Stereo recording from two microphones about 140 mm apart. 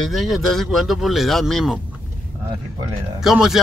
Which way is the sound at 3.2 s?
5° right (ahead or behind).